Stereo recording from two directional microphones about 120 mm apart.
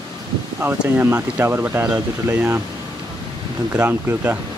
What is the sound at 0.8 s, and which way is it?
Speech, 15° right (ahead or behind).